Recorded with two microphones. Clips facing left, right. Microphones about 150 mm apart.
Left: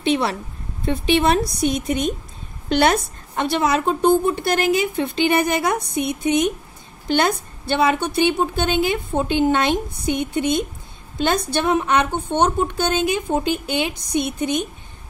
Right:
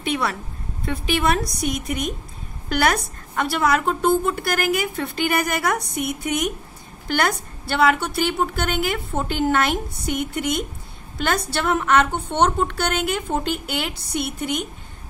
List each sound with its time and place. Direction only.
0.0 s a woman's voice: 30° left (ahead or behind)